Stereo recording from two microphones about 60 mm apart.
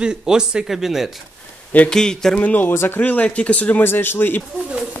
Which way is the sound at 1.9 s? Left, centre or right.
Centre.